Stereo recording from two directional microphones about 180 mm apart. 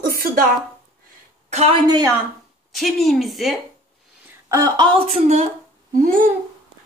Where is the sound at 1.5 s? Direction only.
35° right (ahead or behind).